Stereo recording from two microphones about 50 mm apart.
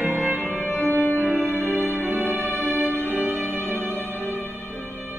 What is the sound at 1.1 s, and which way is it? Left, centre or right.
Music, right.